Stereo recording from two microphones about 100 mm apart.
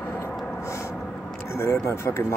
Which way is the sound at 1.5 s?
30° left (ahead or behind).